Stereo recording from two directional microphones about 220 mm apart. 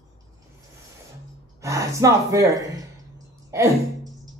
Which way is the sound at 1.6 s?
15° right (ahead or behind).